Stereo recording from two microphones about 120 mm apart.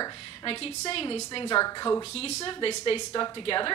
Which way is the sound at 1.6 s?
35° left (ahead or behind).